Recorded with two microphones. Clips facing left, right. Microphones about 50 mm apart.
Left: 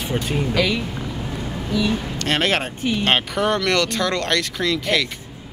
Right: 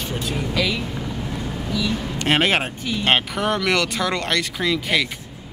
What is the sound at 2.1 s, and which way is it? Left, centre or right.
Speech, centre.